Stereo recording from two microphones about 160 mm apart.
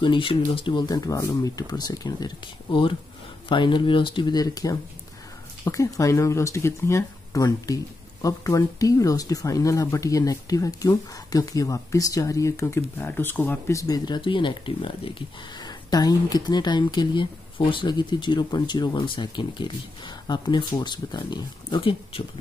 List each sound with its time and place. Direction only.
0.0 s speech: 30° left (ahead or behind)